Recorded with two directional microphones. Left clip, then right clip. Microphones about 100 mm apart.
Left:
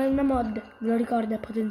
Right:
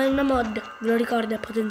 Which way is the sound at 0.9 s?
Centre (ahead or behind).